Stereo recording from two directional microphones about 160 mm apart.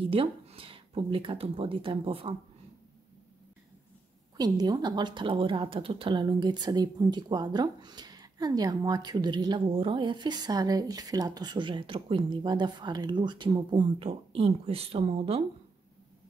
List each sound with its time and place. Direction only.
0.0 s speech: 35° right (ahead or behind)
4.4 s a woman's voice: 25° right (ahead or behind)